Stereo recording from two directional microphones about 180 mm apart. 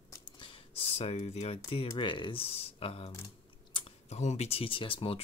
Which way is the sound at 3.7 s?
25° left (ahead or behind).